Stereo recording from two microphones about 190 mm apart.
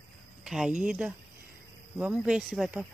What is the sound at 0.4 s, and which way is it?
Speech, 5° right (ahead or behind).